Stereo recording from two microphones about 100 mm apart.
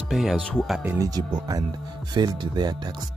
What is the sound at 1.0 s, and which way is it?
Speech, 40° right (ahead or behind).